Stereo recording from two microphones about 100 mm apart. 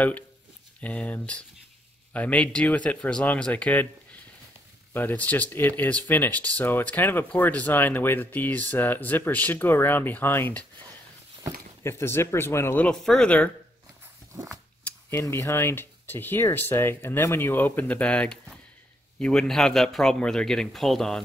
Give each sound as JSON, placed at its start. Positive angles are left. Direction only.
{"t": 0.7, "sound": "speech", "side_deg": 15}
{"t": 4.9, "sound": "speech", "side_deg": 15}
{"t": 11.8, "sound": "speech", "side_deg": 25}
{"t": 12.8, "sound": "speech", "side_deg": 5}
{"t": 14.9, "sound": "a man's voice", "side_deg": 25}